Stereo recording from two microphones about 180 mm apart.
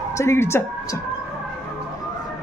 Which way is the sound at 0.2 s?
15° left (ahead or behind).